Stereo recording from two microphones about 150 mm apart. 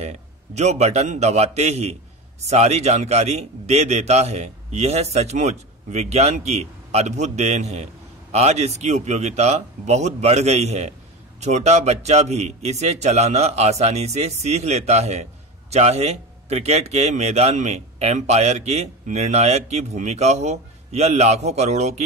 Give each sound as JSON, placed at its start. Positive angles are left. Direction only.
{"t": 0.0, "sound": "speech", "side_deg": -45}